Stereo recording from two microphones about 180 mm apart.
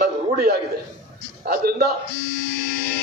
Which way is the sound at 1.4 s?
55° right (ahead or behind).